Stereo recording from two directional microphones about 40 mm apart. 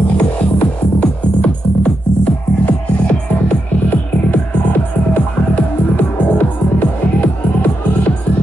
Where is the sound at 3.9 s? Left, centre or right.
Left.